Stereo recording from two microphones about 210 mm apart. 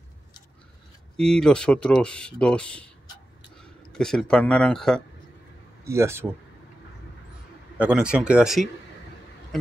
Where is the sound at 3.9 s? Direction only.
5° left (ahead or behind).